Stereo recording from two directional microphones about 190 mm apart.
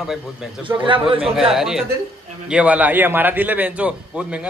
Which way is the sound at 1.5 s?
Centre (ahead or behind).